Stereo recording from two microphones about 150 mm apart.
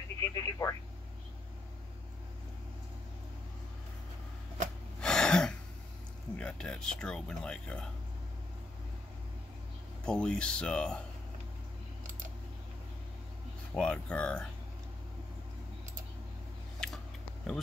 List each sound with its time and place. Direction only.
0.2 s speech: 20° left (ahead or behind)
5.0 s gasp: 5° left (ahead or behind)
6.3 s speech: 5° left (ahead or behind)
10.0 s speech: 5° left (ahead or behind)
13.7 s speech: 5° left (ahead or behind)
16.8 s a sound: 5° left (ahead or behind)